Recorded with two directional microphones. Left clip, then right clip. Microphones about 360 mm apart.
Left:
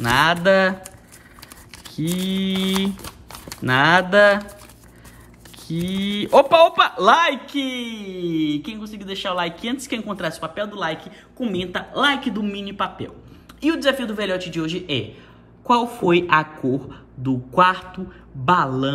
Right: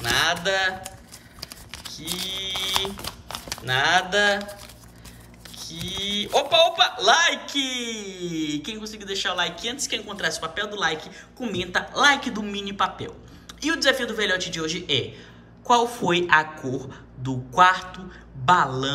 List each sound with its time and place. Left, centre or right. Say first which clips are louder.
0.1 s speech: left 6 dB; centre
2.2 s speech: left 3 dB; centre
2.6 s typing: left 1 dB; centre
3.6 s speech: left 5 dB; centre
5.6 s a woman's voice: left 2 dB; centre